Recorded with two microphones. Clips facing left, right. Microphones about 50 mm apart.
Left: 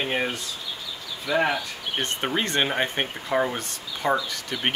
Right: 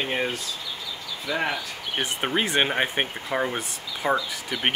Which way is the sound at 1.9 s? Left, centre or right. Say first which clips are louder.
Right 1 dB; centre.